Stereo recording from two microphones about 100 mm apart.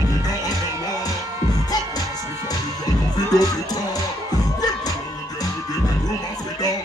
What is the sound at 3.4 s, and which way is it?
Music, 40° left (ahead or behind).